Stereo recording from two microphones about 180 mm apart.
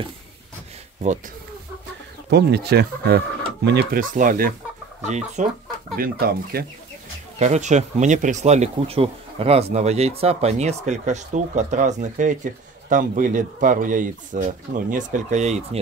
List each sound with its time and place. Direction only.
2.2 s speech: 70° right (ahead or behind)
4.0 s speech: 45° right (ahead or behind)
5.0 s speech: 40° right (ahead or behind)
5.9 s speech: 55° right (ahead or behind)
7.3 s speech: 40° right (ahead or behind)